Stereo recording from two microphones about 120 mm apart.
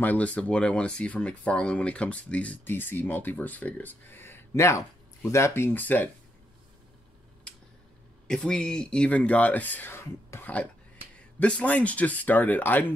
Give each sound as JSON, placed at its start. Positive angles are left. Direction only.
{"t": 0.0, "sound": "speech", "side_deg": 15}
{"t": 8.3, "sound": "speech", "side_deg": 5}
{"t": 11.1, "sound": "speech", "side_deg": 10}